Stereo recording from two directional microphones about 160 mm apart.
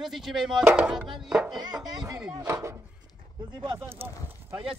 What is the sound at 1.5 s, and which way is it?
Music, 25° right (ahead or behind).